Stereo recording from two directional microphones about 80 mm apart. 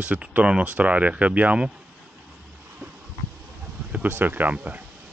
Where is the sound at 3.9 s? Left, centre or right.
Right.